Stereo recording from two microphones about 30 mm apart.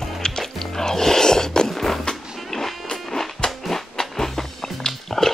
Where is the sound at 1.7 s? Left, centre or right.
Centre.